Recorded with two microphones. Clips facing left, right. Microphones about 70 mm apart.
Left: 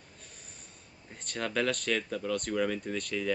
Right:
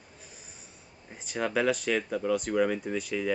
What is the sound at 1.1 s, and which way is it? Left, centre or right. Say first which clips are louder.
Speech: right 4 dB; centre.